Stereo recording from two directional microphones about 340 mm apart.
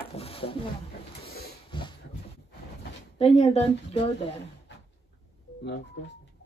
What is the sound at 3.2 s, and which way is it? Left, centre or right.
Speech, centre.